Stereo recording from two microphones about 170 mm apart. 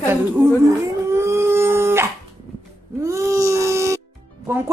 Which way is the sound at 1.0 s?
15° right (ahead or behind).